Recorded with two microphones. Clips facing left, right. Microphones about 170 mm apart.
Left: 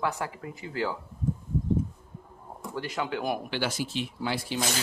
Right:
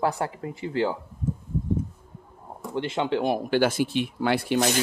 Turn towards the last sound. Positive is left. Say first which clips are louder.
# right 7 dB
turn(degrees=-60)  # may be behind; listen again after turning